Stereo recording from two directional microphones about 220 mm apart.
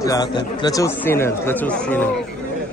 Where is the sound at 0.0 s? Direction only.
15° left (ahead or behind).